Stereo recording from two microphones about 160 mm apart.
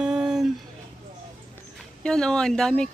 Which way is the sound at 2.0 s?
5° left (ahead or behind).